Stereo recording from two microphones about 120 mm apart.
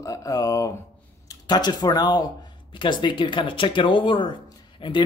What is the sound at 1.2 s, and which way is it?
Speech, 35° left (ahead or behind).